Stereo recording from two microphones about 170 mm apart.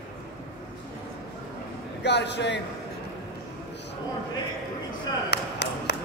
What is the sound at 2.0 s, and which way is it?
Speech, 90° left.